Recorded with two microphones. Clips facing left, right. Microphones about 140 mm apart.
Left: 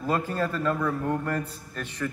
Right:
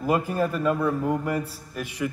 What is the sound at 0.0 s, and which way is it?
A man's voice, 10° right (ahead or behind).